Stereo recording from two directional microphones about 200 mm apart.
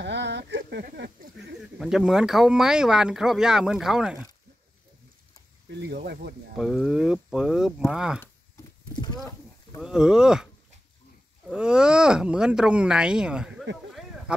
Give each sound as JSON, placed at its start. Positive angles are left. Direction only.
{"t": 0.0, "sound": "speech", "side_deg": -60}
{"t": 1.8, "sound": "speech", "side_deg": 0}
{"t": 5.7, "sound": "speech", "side_deg": -55}
{"t": 6.5, "sound": "speech", "side_deg": 0}
{"t": 8.9, "sound": "speech", "side_deg": 20}
{"t": 9.8, "sound": "speech", "side_deg": -5}